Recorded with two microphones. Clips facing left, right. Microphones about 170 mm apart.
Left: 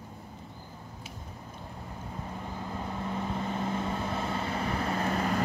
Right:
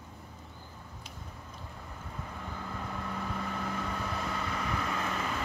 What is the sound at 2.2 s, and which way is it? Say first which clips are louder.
Vehicle: left 3 dB; 25° left (ahead or behind).